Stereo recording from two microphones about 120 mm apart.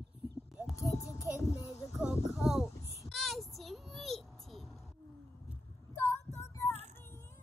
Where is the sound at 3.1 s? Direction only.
Centre (ahead or behind).